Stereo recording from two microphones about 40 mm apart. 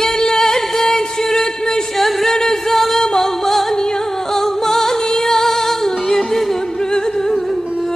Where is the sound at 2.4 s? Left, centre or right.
Centre.